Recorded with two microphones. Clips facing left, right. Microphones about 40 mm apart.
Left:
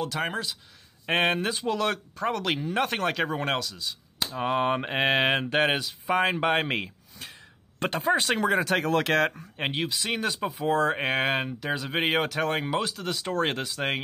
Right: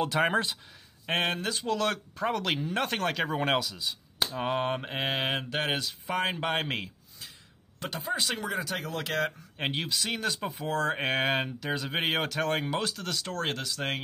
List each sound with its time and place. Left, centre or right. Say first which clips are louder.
0.3 s speech: right 4 dB; right
1.0 s speech: left 4 dB; centre
1.6 s speech: left 2 dB; centre
4.4 s speech: left 5 dB; centre
4.7 s speech: left 6 dB; left
5.0 s speech: left 7 dB; left
5.4 s speech: left 6 dB; left
7.8 s speech: left 7 dB; left
8.4 s speech: left 8 dB; left
9.6 s speech: left 2 dB; centre